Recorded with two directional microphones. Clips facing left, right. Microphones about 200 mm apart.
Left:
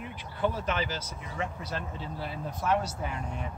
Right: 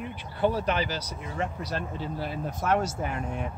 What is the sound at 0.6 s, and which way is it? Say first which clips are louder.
Speech: right 3 dB; 35° right (ahead or behind).